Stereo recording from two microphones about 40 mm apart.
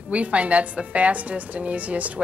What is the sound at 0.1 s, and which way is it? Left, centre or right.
Speech, right.